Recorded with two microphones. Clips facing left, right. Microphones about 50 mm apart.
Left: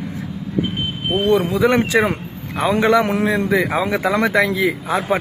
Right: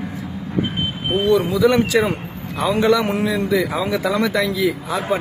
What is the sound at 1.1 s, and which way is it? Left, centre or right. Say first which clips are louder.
Speech: even; left.